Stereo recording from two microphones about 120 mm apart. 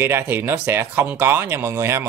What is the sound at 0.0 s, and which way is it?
Speech, 20° right (ahead or behind).